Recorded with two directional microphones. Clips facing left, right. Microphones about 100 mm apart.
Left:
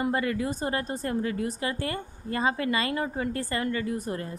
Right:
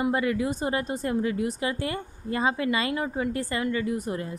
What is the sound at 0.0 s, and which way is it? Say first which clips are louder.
A woman's voice: right 2 dB; 20° right (ahead or behind).